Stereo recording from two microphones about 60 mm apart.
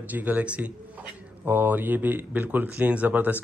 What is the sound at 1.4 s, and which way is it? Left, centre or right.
Speech, right.